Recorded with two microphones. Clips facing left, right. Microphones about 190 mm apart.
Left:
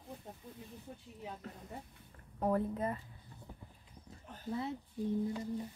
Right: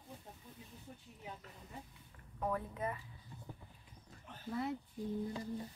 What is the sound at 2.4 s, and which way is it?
Speech, 35° left (ahead or behind).